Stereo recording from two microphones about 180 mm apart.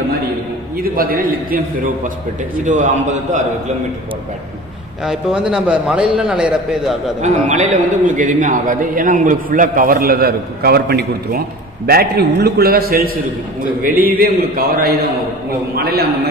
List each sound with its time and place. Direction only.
0.8 s a man's voice: 55° right (ahead or behind)
5.0 s a man's voice: 5° right (ahead or behind)
7.2 s a man's voice: 40° right (ahead or behind); by 16.1 s 60° right (ahead or behind)